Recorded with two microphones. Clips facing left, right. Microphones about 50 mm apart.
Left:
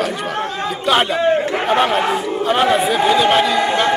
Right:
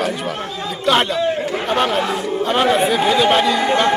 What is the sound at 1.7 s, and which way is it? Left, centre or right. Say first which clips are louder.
Chatter: left 2 dB; centre.